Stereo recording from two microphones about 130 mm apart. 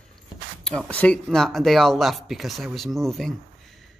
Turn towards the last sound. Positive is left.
turn(degrees=0)  # may be behind; listen again after turning